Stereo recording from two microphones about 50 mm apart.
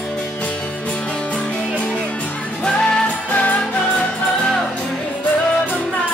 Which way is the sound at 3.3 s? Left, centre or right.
Left.